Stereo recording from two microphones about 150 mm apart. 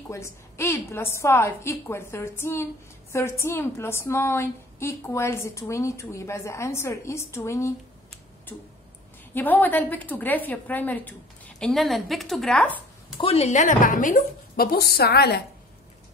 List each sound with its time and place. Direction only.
0.1 s a woman's voice: 20° left (ahead or behind)
9.3 s a woman's voice: 10° left (ahead or behind)
13.2 s a woman's voice: 45° left (ahead or behind); by 15.4 s 90° left